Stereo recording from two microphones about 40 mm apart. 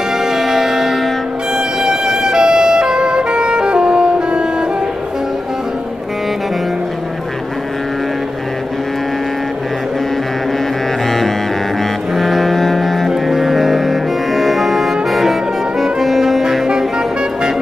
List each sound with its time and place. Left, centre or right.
0.2 s music: centre
1.8 s music: centre
11.1 s music: centre
13.1 s music: centre
15.8 s saxophone: centre